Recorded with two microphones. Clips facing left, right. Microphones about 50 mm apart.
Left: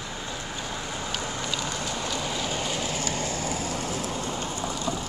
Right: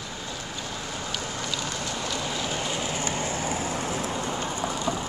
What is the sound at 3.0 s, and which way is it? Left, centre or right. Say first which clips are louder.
Vehicle: right 1 dB; centre.